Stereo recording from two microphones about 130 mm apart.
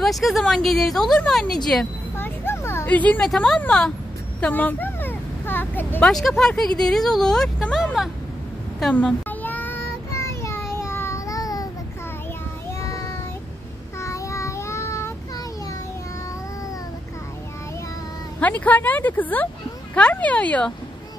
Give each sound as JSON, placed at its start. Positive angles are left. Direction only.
{"t": 0.0, "sound": "speech", "side_deg": 0}
{"t": 2.1, "sound": "a sound", "side_deg": 15}
{"t": 3.3, "sound": "speech", "side_deg": 5}
{"t": 4.4, "sound": "a sound", "side_deg": 15}
{"t": 6.0, "sound": "speech", "side_deg": 0}
{"t": 8.9, "sound": "child singing", "side_deg": 10}
{"t": 12.8, "sound": "child singing", "side_deg": 25}
{"t": 18.4, "sound": "speech", "side_deg": 10}